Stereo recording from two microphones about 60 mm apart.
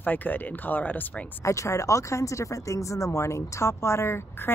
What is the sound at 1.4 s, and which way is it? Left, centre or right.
Speech, left.